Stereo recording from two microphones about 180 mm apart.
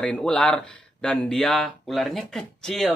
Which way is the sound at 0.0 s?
5° left (ahead or behind).